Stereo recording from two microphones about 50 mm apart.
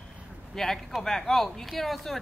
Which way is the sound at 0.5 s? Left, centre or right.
Centre.